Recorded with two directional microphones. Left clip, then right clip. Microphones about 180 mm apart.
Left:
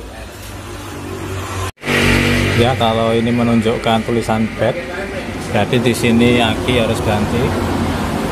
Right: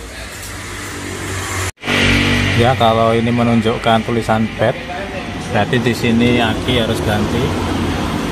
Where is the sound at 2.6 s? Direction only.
5° right (ahead or behind).